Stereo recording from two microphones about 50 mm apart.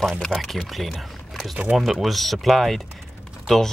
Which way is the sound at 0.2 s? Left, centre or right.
Centre.